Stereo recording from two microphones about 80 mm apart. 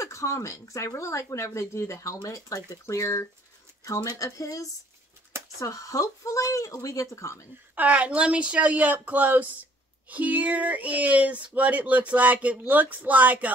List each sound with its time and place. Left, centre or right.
0.0 s speech: left
7.7 s speech: centre